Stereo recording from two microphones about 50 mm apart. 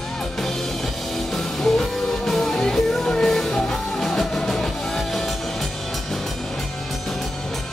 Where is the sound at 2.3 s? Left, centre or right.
Centre.